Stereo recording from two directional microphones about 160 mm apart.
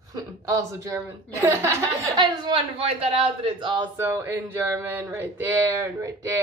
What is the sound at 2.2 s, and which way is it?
Speech, 30° right (ahead or behind).